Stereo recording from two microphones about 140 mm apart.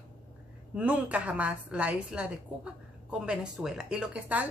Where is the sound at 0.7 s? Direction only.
10° right (ahead or behind).